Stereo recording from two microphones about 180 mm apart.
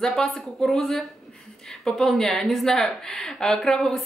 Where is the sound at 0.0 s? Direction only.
Centre (ahead or behind).